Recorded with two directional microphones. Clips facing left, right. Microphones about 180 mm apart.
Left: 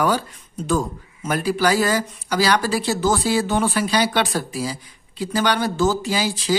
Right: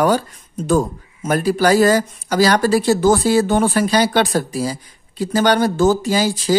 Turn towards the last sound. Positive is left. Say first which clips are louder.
# right 5 dB
turn(degrees=-45)  # may be behind; listen again after turning